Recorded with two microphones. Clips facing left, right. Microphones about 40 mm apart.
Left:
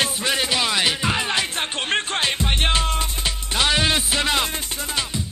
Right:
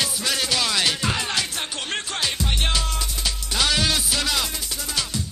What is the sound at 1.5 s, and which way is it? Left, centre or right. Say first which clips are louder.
Music: left 5 dB; left.